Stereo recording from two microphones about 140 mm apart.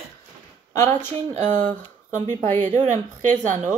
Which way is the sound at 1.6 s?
65° right (ahead or behind).